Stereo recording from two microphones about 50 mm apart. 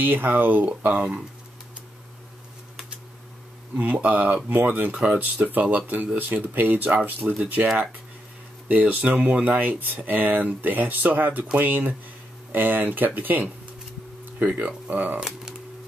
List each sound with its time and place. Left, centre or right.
0.0 s speech: right
3.7 s speech: right
4.9 s speech: right
5.2 s speech: right
8.6 s speech: right
15.1 s speech: centre